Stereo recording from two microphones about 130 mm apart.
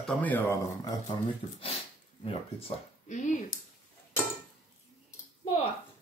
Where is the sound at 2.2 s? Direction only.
50° left (ahead or behind).